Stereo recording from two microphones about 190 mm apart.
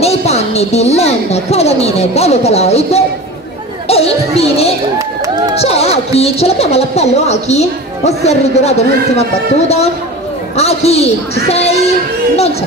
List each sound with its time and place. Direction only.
0.0 s a woman's voice: 35° left (ahead or behind)
4.9 s speech: 20° right (ahead or behind)
5.6 s a woman's voice: 35° left (ahead or behind)
10.5 s a woman's voice: 35° left (ahead or behind)